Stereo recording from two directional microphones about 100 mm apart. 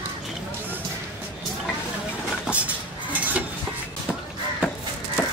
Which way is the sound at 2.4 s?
15° right (ahead or behind).